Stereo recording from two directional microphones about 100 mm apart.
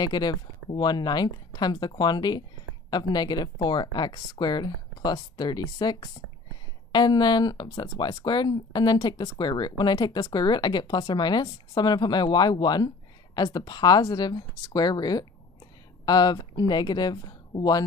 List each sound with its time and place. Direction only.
0.0 s speech: 45° left (ahead or behind)